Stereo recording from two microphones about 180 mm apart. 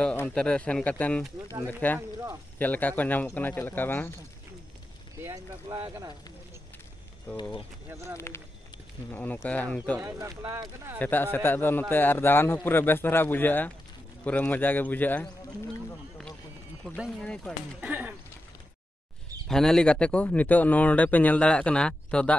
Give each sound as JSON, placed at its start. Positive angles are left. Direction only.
{"t": 0.0, "sound": "speech", "side_deg": 10}
{"t": 5.2, "sound": "speech", "side_deg": -20}
{"t": 7.9, "sound": "speech", "side_deg": -15}
{"t": 9.1, "sound": "speech", "side_deg": 10}
{"t": 9.9, "sound": "speech", "side_deg": -15}
{"t": 11.0, "sound": "speech", "side_deg": 10}
{"t": 16.9, "sound": "speech", "side_deg": 0}
{"t": 17.7, "sound": "speech", "side_deg": -10}
{"t": 19.4, "sound": "speech", "side_deg": 5}